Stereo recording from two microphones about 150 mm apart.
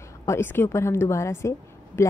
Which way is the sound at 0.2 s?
15° left (ahead or behind).